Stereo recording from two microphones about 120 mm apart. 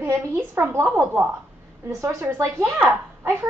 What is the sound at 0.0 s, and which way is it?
A woman's voice, 20° right (ahead or behind).